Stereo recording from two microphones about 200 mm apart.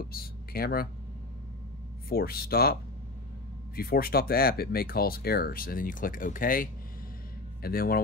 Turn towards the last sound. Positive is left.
turn(degrees=50)  # may be behind; listen again after turning